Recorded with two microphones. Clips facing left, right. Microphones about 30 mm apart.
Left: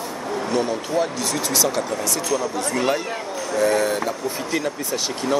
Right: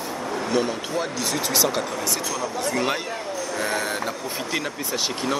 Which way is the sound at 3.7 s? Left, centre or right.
Centre.